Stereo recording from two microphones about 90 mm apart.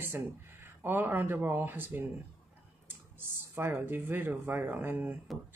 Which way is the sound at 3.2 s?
25° right (ahead or behind).